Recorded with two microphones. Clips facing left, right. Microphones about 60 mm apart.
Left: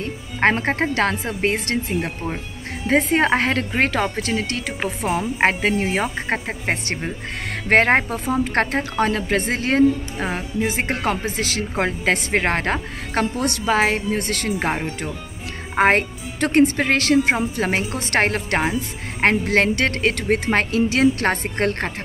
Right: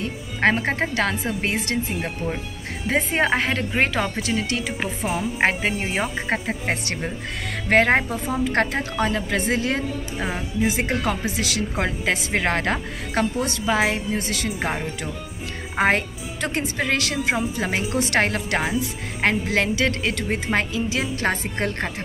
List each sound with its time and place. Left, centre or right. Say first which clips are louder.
0.0 s a woman's voice: left 2 dB; left
6.2 s speech: left 1 dB; left
7.7 s a woman's voice: left 2 dB; left